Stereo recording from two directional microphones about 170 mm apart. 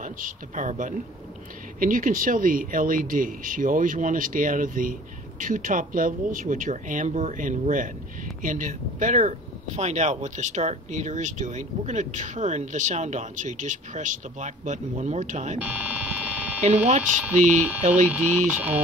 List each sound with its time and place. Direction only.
0.0 s speech: 50° right (ahead or behind)
15.6 s a sound: 10° right (ahead or behind)
16.6 s speech: 40° right (ahead or behind)
18.0 s speech: 10° right (ahead or behind)